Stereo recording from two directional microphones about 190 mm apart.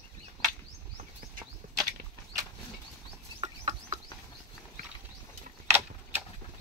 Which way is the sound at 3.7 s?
40° right (ahead or behind).